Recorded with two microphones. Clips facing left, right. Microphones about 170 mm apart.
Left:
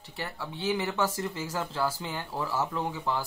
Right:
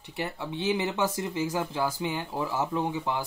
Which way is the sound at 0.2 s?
20° right (ahead or behind).